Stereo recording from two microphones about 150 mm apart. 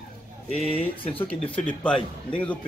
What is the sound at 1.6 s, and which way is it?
Speech, 5° left (ahead or behind).